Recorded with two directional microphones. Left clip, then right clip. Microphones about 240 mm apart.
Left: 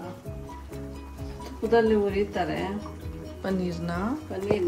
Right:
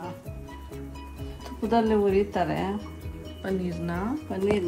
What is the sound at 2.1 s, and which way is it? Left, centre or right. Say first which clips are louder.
Speech: right 3 dB; centre.